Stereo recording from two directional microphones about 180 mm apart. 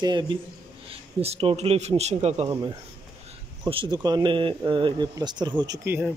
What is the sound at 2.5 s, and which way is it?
Speech, 20° right (ahead or behind).